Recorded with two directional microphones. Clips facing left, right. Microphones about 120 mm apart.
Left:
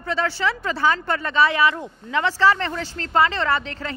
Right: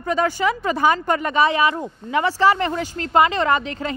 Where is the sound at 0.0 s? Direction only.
15° right (ahead or behind).